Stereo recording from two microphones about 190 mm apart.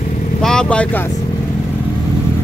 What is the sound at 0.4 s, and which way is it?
Speech, 5° left (ahead or behind).